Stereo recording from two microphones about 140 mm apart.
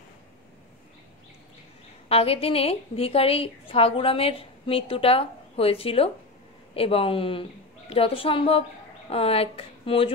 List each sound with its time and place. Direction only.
2.0 s a woman's voice: 45° left (ahead or behind)